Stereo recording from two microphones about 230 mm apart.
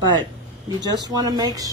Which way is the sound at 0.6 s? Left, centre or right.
Centre.